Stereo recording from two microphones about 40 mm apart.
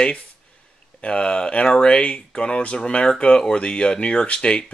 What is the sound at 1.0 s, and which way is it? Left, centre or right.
Speech, left.